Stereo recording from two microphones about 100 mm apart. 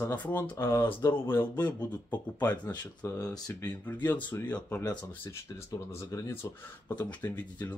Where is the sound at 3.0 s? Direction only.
25° left (ahead or behind).